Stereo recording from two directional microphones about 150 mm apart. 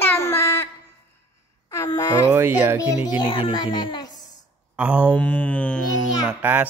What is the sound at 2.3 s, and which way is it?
Speech, 15° right (ahead or behind).